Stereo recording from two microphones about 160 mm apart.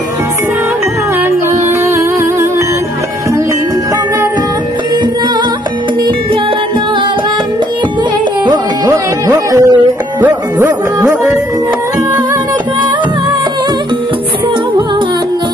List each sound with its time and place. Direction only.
8.5 s music: 20° right (ahead or behind)